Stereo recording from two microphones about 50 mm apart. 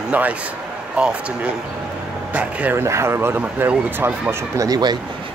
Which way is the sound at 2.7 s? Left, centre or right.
Right.